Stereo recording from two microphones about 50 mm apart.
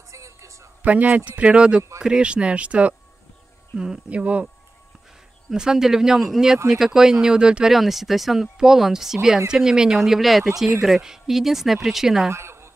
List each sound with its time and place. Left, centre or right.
0.1 s a sound: right
0.8 s a man's voice: right
3.7 s speech: centre
4.1 s a man's voice: right
5.5 s speech: centre
7.7 s speech: centre
12.3 s a sound: right